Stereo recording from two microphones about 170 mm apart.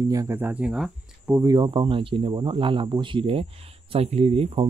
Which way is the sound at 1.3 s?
25° right (ahead or behind).